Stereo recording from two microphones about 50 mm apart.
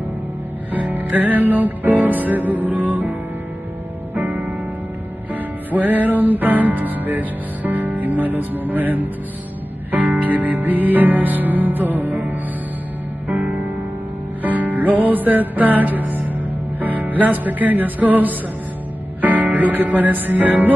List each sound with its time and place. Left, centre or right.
0.7 s music: right
4.1 s music: right
5.3 s music: right
13.3 s music: right
14.4 s music: right